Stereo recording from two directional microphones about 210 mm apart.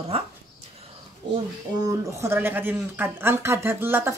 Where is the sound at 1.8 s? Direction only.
15° right (ahead or behind).